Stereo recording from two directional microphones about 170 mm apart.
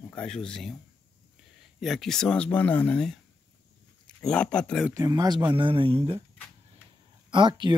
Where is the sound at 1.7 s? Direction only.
Centre (ahead or behind).